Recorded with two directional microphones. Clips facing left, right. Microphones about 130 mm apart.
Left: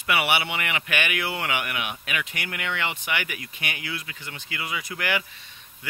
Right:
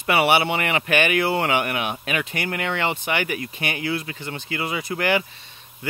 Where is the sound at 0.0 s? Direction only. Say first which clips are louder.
Right 6 dB; 35° right (ahead or behind).